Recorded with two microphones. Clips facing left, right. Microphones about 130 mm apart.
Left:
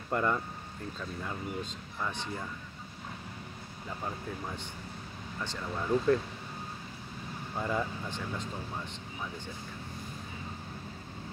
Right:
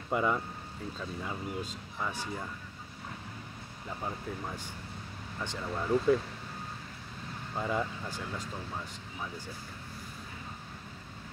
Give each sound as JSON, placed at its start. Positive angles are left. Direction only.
{"t": 0.1, "sound": "speech", "side_deg": -5}
{"t": 5.4, "sound": "speech", "side_deg": -15}
{"t": 5.7, "sound": "speech", "side_deg": -5}
{"t": 7.5, "sound": "speech", "side_deg": 0}